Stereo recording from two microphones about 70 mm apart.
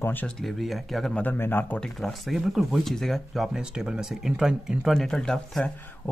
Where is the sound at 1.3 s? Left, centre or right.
Left.